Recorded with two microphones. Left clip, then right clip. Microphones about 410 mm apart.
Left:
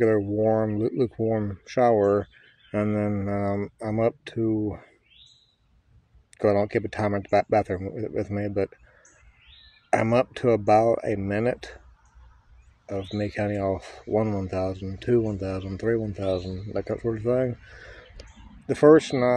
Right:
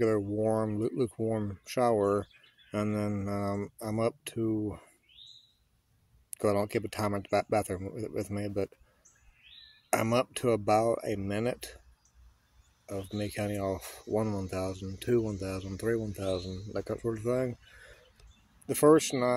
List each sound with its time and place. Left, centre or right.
0.0 s speech: right
6.3 s speech: right
9.8 s speech: right
12.8 s speech: right
18.7 s speech: right